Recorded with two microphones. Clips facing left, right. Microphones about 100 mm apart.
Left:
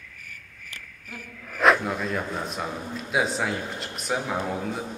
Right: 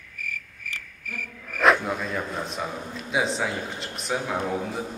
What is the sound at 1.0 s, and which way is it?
Frog, 30° left (ahead or behind).